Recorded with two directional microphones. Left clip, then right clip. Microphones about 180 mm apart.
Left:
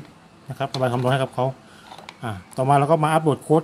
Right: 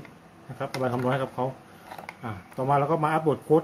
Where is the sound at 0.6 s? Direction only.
65° left (ahead or behind).